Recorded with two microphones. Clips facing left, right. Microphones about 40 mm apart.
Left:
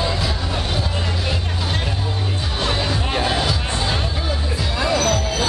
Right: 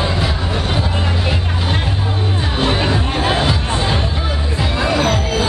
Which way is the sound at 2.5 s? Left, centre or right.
Right.